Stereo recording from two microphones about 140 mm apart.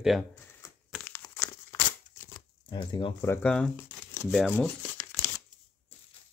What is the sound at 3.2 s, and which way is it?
Speech, 15° left (ahead or behind).